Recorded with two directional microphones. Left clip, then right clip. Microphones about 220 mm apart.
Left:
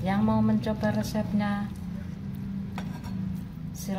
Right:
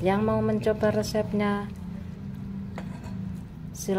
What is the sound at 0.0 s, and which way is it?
A woman's voice, 45° right (ahead or behind).